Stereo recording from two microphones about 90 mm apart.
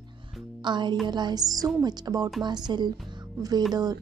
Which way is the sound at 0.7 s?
55° right (ahead or behind).